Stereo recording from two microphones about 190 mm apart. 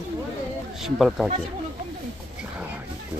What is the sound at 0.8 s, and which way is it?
Speech, centre (ahead or behind).